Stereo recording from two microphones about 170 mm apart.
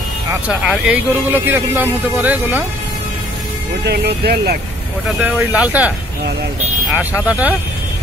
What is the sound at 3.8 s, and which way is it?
Speech, 75° right (ahead or behind).